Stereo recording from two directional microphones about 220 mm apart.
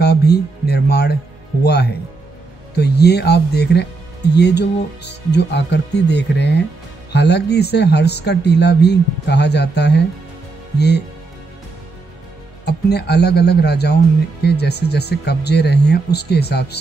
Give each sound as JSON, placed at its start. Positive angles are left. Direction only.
{"t": 0.0, "sound": "speech", "side_deg": 45}
{"t": 12.6, "sound": "speech", "side_deg": 50}